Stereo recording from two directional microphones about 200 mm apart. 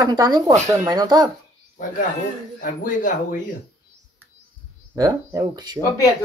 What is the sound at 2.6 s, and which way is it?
Speech, 40° left (ahead or behind).